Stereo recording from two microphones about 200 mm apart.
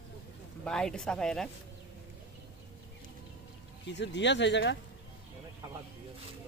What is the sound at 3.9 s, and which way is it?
Speech, 60° left (ahead or behind).